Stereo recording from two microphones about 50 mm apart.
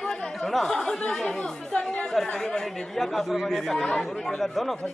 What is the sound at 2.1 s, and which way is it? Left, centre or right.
Speech, centre.